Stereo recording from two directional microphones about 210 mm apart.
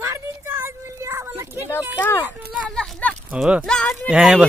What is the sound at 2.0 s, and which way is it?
A man's voice, 10° left (ahead or behind).